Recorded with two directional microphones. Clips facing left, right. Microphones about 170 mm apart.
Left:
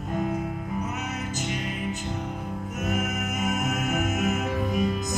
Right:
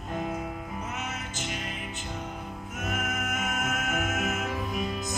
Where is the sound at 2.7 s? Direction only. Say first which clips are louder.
Left 4 dB; 40° left (ahead or behind).